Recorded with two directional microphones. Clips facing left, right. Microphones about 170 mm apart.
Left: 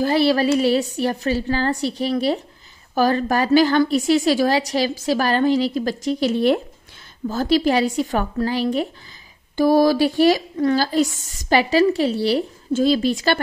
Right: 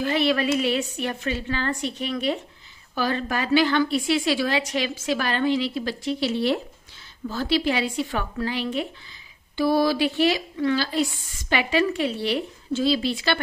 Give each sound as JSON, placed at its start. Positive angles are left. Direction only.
{"t": 0.0, "sound": "a woman's voice", "side_deg": 35}